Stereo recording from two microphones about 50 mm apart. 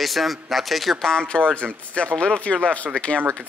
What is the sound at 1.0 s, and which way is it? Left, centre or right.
Speech, centre.